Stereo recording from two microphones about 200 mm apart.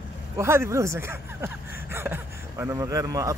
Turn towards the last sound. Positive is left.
turn(degrees=-15)  # may be behind; listen again after turning